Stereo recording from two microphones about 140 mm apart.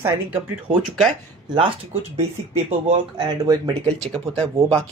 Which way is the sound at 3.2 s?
35° right (ahead or behind).